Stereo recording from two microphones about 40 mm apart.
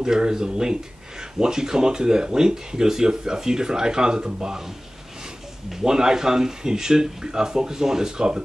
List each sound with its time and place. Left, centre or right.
0.0 s speech: centre
5.7 s speech: centre